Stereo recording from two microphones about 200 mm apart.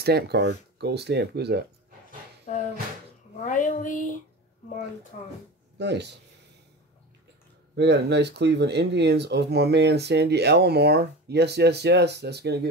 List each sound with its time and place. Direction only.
0.0 s speech: 55° right (ahead or behind)
2.5 s a sound: 40° left (ahead or behind)
3.4 s speech: 40° left (ahead or behind)
5.1 s speech: 40° left (ahead or behind)
5.8 s speech: 60° right (ahead or behind)
7.7 s speech: 60° right (ahead or behind)